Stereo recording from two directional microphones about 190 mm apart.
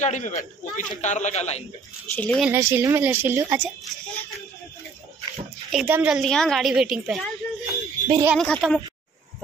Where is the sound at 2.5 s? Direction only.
15° right (ahead or behind).